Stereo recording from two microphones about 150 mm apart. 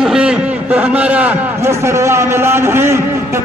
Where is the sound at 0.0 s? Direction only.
5° right (ahead or behind).